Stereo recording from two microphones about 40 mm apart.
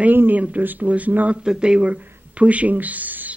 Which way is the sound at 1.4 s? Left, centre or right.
Right.